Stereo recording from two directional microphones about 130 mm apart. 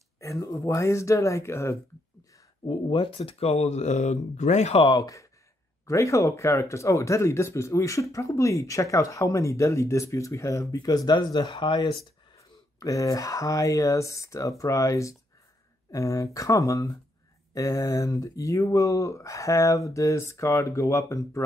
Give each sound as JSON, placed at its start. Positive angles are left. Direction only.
{"t": 0.2, "sound": "speech", "side_deg": 25}
{"t": 2.6, "sound": "speech", "side_deg": 40}
{"t": 4.8, "sound": "speech", "side_deg": 30}
{"t": 12.4, "sound": "speech", "side_deg": 25}